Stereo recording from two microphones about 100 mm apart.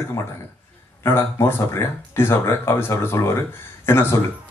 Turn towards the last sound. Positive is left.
turn(degrees=25)  # may be behind; listen again after turning